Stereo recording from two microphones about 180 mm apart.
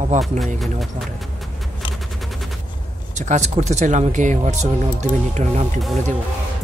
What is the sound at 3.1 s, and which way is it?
Speech, 40° right (ahead or behind).